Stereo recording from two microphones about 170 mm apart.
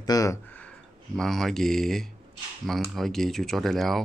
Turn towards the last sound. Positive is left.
turn(degrees=0)  # may be behind; listen again after turning